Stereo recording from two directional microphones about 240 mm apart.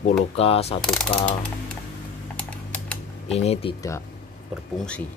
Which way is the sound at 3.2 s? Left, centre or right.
Left.